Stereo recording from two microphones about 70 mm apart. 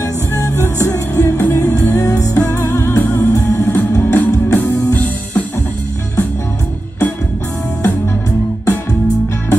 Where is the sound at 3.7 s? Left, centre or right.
Left.